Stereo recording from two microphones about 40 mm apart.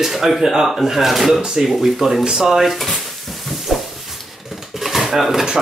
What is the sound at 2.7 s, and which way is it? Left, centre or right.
Dishes, centre.